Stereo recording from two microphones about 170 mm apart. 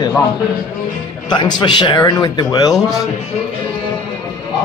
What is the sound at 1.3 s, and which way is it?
A man's voice, 25° left (ahead or behind).